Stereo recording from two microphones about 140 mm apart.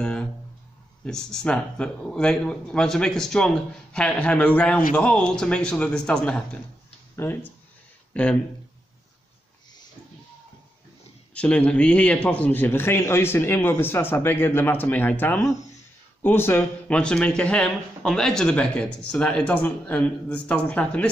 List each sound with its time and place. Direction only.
0.0 s a sound: 5° left (ahead or behind)
1.0 s speech: 5° left (ahead or behind)
11.3 s speech: 10° left (ahead or behind)